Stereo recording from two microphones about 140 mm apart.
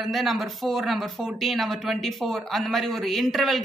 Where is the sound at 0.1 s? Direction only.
Centre (ahead or behind).